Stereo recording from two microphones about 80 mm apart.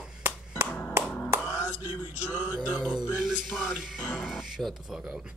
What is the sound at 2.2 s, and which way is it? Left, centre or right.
Speech, centre.